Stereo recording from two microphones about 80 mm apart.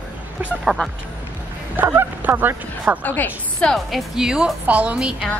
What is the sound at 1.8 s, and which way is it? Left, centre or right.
A woman's voice, right.